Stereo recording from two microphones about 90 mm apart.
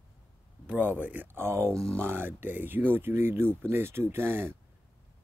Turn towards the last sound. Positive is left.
turn(degrees=-25)  # may be behind; listen again after turning